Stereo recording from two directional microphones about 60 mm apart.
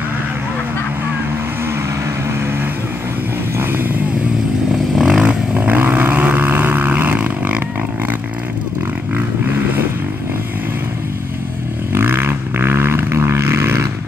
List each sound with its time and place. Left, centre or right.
5.0 s vehicle: centre
5.6 s vehicle: right
7.2 s vehicle: right
11.9 s vehicle: right